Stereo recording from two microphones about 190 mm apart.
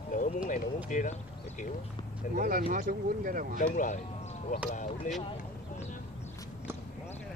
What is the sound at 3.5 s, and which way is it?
Speech, 40° left (ahead or behind).